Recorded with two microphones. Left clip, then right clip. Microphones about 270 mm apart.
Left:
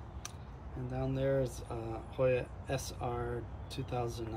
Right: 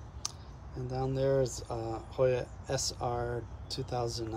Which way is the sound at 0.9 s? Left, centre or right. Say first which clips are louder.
Right 4 dB; centre.